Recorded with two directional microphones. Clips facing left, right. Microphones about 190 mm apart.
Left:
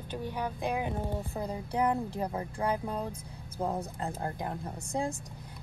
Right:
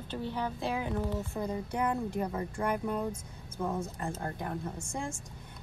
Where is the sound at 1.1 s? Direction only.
60° left (ahead or behind).